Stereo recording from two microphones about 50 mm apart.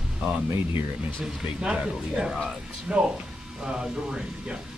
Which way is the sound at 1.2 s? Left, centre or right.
Centre.